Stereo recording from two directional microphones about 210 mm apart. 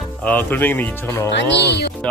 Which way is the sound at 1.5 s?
55° left (ahead or behind).